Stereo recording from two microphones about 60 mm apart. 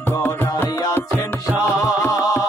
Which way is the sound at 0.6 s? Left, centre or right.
Left.